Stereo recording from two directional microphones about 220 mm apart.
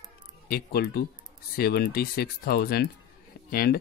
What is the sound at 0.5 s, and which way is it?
Speech, 45° left (ahead or behind).